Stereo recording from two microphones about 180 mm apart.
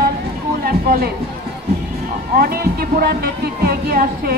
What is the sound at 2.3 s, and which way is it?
Speech, 55° right (ahead or behind).